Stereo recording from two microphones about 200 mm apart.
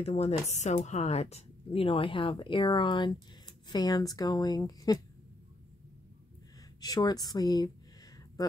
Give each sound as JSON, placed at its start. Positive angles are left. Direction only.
{"t": 0.0, "sound": "a woman's voice", "side_deg": 30}
{"t": 6.8, "sound": "a woman's voice", "side_deg": 20}